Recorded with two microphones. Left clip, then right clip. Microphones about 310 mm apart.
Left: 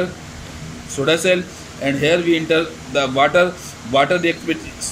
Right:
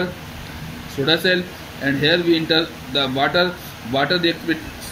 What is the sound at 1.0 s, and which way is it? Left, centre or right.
Speech, left.